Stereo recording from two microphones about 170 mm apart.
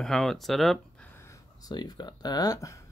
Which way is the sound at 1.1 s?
20° left (ahead or behind).